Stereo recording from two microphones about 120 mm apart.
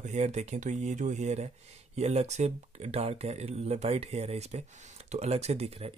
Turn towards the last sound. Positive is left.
turn(degrees=-55)  # may be behind; listen again after turning